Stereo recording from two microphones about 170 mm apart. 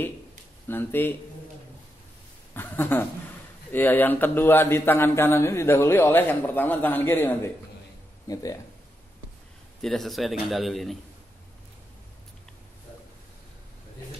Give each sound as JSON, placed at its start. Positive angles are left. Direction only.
{"t": 0.7, "sound": "a man's voice", "side_deg": 10}
{"t": 2.5, "sound": "a man's voice", "side_deg": 10}
{"t": 9.8, "sound": "speech", "side_deg": 0}